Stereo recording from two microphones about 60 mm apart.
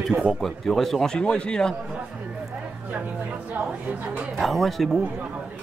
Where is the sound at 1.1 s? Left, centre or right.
Centre.